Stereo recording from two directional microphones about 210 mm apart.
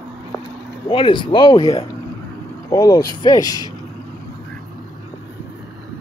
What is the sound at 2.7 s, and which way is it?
Speech, 15° left (ahead or behind).